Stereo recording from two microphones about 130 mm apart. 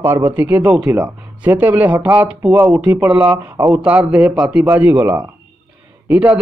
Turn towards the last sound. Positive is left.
turn(degrees=-10)  # may be behind; listen again after turning